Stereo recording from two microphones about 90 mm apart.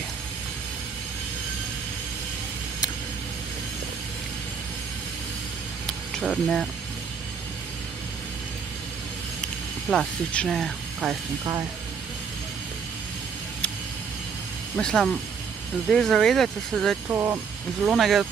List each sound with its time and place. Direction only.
5.9 s a sound: centre (ahead or behind)
9.8 s speech: 10° left (ahead or behind)
14.8 s speech: 10° left (ahead or behind)
17.1 s speech: 25° right (ahead or behind)
17.9 s speech: centre (ahead or behind)